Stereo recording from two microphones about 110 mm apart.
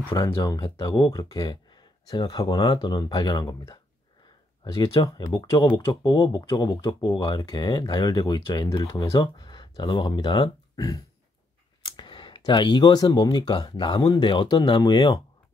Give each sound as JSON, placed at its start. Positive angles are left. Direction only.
{"t": 0.1, "sound": "speech", "side_deg": 35}
{"t": 10.8, "sound": "a sound", "side_deg": 30}
{"t": 12.0, "sound": "speech", "side_deg": 45}